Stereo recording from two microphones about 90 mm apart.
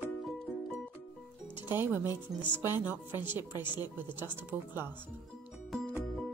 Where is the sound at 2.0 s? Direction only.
60° left (ahead or behind).